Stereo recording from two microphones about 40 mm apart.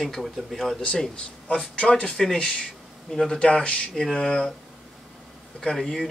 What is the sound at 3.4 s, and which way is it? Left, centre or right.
Speech, left.